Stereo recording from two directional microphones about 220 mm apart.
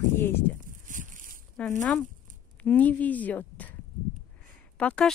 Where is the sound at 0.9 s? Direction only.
35° right (ahead or behind).